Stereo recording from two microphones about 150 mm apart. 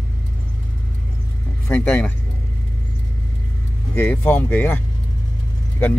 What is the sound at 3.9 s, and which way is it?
Speech, 15° left (ahead or behind).